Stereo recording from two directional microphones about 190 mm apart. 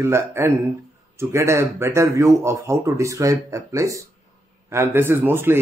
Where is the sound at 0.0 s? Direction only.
15° right (ahead or behind).